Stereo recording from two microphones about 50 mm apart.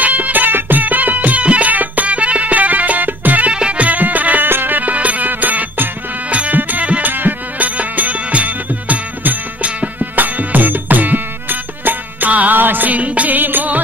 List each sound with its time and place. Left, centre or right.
0.0 s music: right